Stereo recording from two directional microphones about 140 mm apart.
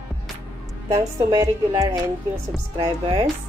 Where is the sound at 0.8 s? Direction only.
25° right (ahead or behind).